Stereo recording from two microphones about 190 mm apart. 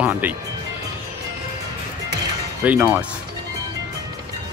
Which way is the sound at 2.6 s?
10° right (ahead or behind).